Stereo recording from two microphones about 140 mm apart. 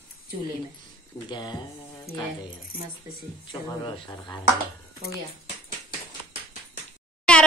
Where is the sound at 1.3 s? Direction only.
30° left (ahead or behind).